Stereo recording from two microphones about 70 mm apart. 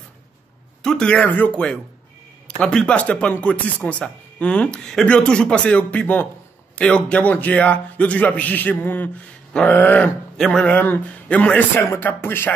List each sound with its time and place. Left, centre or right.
0.8 s speech: centre
1.3 s a man's voice: left
2.6 s a man's voice: centre
10.3 s speech: centre
10.7 s a man's voice: left
11.7 s speech: left